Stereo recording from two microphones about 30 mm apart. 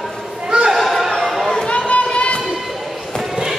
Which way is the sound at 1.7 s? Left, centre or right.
Left.